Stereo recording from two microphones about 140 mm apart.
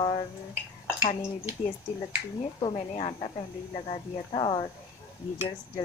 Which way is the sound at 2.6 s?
40° left (ahead or behind).